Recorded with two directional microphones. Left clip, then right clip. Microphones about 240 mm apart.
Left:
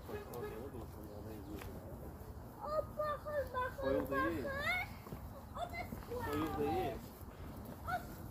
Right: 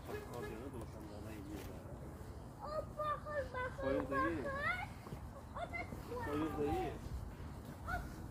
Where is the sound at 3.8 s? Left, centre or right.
Centre.